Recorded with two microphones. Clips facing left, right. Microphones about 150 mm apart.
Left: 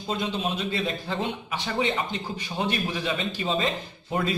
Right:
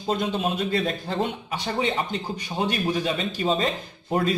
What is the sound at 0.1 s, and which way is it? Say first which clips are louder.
A man's voice: right 3 dB; 45° right (ahead or behind).